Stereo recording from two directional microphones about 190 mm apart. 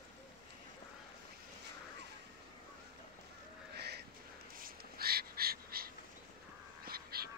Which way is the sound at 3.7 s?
60° right (ahead or behind).